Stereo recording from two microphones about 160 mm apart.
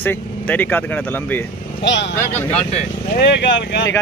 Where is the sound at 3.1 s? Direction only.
90° left.